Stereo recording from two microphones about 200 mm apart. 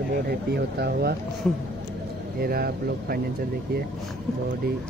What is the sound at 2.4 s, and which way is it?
Speech, 50° right (ahead or behind).